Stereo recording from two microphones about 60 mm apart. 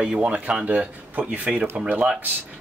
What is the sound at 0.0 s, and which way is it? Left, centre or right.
Speech, centre.